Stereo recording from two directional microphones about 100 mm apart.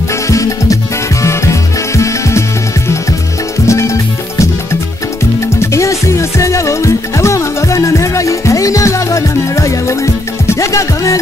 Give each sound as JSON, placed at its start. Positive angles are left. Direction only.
{"t": 0.3, "sound": "music", "side_deg": 35}
{"t": 3.6, "sound": "music", "side_deg": 30}